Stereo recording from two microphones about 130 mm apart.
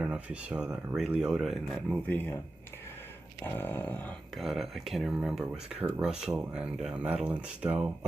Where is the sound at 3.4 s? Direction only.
15° left (ahead or behind).